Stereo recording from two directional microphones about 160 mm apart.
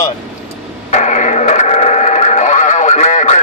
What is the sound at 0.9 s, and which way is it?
Radio, 45° left (ahead or behind).